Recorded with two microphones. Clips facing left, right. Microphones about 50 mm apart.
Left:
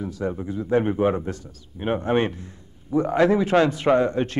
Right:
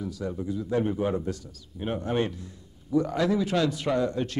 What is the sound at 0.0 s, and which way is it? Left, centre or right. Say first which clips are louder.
A man's voice: left 4 dB; left.